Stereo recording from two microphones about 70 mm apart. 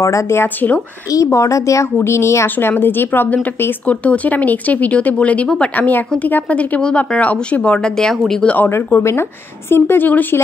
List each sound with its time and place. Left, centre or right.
0.0 s speech: left
0.6 s a woman's voice: left
1.1 s speech: left
2.5 s a woman's voice: left; by 8.5 s centre
8.5 s speech: left